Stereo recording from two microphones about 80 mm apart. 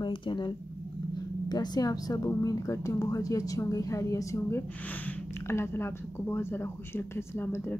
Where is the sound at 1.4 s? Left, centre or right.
Left.